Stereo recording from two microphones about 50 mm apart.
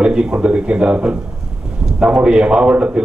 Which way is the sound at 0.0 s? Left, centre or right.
Centre.